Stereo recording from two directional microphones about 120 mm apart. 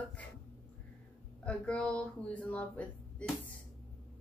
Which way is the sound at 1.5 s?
10° left (ahead or behind).